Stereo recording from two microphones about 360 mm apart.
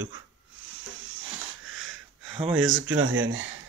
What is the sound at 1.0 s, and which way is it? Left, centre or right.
Wheeze, right.